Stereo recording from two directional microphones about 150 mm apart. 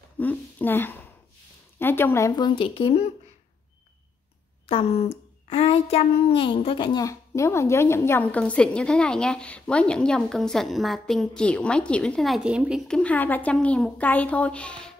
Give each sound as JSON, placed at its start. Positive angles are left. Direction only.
{"t": 0.2, "sound": "a child's voice", "side_deg": 10}
{"t": 2.3, "sound": "speech", "side_deg": 30}
{"t": 4.6, "sound": "a child's voice", "side_deg": 40}
{"t": 12.8, "sound": "a child's voice", "side_deg": 5}